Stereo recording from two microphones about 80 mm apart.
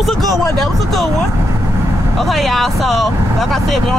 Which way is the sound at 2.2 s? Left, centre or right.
Centre.